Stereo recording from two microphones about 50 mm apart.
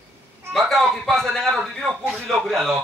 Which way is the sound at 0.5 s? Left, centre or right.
Centre.